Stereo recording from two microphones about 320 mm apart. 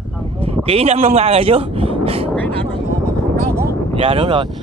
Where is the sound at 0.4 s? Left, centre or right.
Centre.